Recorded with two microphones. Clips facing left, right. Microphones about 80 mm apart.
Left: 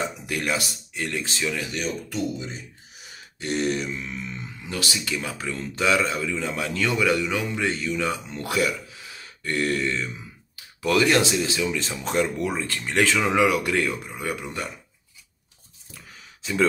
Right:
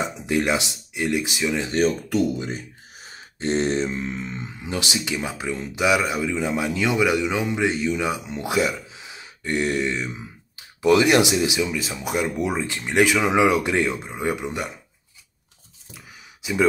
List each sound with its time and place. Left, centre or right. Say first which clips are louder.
0.0 s speech: right 5 dB; right
1.7 s speech: right 9 dB; right
3.1 s speech: right 5 dB; right
16.4 s speech: right 2 dB; centre